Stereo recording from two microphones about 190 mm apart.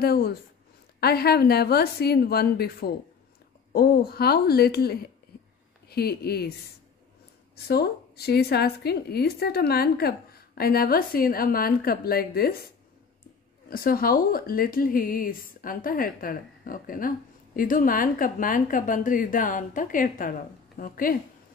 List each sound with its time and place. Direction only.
0.0 s a woman's voice: 55° left (ahead or behind)
7.6 s a woman's voice: 55° left (ahead or behind)
13.7 s a woman's voice: 50° left (ahead or behind)